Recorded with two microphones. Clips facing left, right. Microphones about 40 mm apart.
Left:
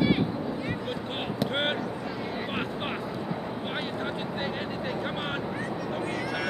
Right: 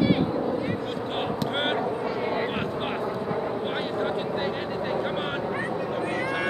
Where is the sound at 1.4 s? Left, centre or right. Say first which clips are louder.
Left 1 dB; centre.